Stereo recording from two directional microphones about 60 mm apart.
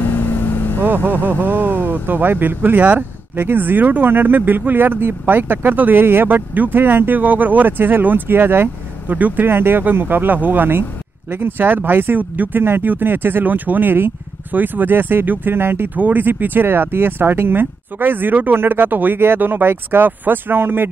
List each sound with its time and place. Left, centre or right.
0.8 s speech: right